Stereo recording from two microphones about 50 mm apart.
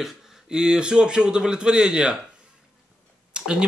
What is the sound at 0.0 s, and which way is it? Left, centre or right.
Speech, centre.